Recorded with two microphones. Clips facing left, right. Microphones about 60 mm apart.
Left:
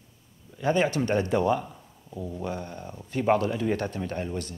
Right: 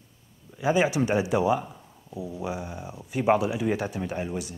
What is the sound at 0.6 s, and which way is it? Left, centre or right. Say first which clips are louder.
Speech: right 1 dB; centre.